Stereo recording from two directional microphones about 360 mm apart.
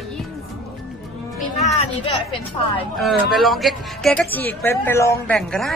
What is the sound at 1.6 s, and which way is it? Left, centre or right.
Speech, centre.